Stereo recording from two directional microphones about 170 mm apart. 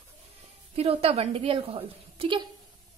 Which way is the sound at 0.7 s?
35° right (ahead or behind).